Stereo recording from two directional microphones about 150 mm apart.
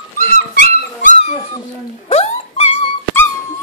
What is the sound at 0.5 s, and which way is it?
Dog, 75° left (ahead or behind).